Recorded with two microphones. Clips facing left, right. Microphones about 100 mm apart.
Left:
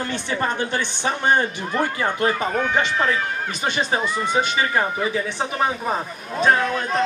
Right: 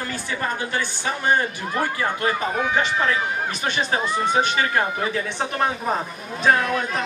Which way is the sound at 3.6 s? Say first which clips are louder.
Left 2 dB; 5° left (ahead or behind).